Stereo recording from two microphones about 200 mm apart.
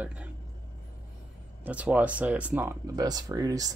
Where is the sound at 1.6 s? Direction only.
5° right (ahead or behind).